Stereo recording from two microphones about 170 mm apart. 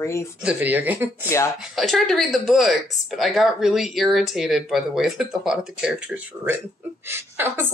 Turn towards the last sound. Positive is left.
turn(degrees=-15)  # may be behind; listen again after turning